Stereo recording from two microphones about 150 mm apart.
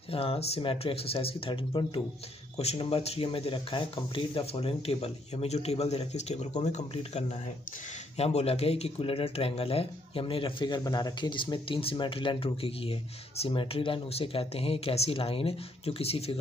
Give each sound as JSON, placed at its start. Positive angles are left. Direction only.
{"t": 0.1, "sound": "speech", "side_deg": 40}
{"t": 2.5, "sound": "speech", "side_deg": 45}